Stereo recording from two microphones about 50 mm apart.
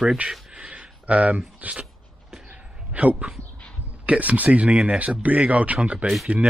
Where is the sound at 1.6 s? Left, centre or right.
Right.